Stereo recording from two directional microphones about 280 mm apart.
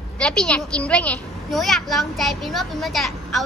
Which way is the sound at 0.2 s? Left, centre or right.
Centre.